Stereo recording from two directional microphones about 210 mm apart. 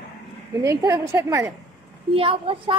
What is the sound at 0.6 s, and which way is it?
Speech, 15° right (ahead or behind).